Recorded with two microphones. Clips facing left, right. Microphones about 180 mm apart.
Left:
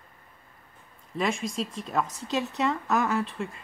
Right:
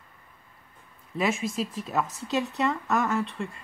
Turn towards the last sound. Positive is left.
turn(degrees=0)  # may be behind; listen again after turning